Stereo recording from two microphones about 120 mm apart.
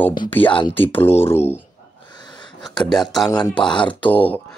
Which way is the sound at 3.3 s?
35° left (ahead or behind).